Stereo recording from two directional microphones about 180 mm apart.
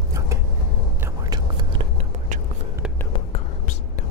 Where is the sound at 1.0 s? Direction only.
20° right (ahead or behind).